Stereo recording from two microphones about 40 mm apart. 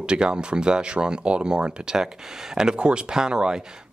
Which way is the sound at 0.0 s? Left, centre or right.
Right.